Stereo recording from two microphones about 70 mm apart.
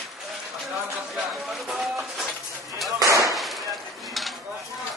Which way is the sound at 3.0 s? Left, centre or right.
Right.